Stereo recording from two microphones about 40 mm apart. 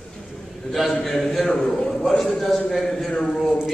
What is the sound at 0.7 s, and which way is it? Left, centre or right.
A man's voice, centre.